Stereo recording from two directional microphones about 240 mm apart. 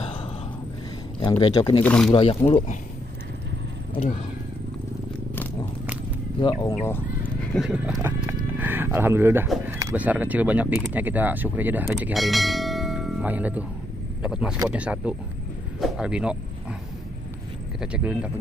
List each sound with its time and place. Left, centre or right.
0.0 s a sound: left
1.2 s speech: centre
1.8 s speech: centre
2.1 s speech: left
6.7 s speech: centre
7.5 s speech: centre
17.7 s speech: centre